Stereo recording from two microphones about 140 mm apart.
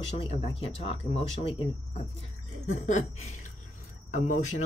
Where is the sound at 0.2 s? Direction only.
45° left (ahead or behind).